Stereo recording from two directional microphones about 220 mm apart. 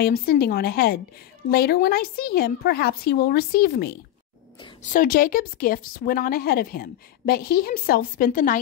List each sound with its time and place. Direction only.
0.0 s speech: 45° left (ahead or behind)
4.9 s speech: 40° left (ahead or behind)